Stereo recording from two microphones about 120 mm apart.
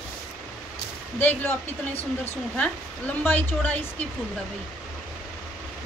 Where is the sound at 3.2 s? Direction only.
15° left (ahead or behind).